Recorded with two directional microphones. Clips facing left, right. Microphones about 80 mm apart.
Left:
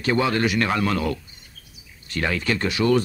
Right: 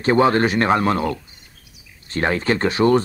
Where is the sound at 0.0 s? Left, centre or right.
Right.